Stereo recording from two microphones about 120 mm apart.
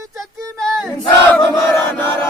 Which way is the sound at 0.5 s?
5° left (ahead or behind).